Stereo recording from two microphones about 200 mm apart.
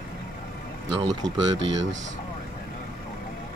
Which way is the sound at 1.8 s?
65° right (ahead or behind).